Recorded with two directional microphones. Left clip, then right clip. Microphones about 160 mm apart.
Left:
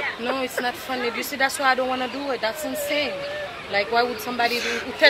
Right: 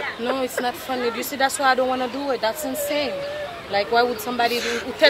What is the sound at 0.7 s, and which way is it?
Speech, 15° right (ahead or behind).